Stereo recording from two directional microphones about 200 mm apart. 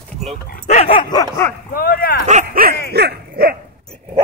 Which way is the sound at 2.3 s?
40° right (ahead or behind).